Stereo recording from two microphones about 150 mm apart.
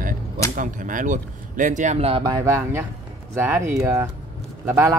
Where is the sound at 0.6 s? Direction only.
60° right (ahead or behind); by 2.2 s 45° right (ahead or behind).